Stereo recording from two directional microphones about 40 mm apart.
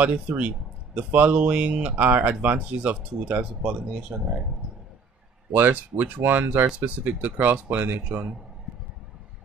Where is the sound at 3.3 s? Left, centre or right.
Right.